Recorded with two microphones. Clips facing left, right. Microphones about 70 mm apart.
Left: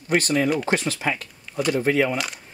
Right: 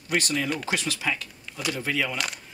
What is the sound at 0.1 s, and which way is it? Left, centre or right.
Speech, left.